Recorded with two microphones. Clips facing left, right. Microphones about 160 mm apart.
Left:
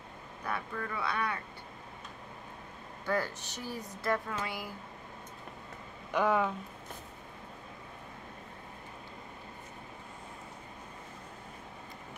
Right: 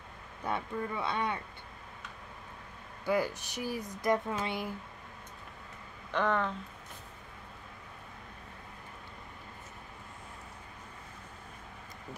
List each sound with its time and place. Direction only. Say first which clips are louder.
0.5 s speech: right 3 dB; 20° right (ahead or behind)
3.1 s speech: right 3 dB; 10° right (ahead or behind)
6.1 s speech: left 2 dB; 10° left (ahead or behind)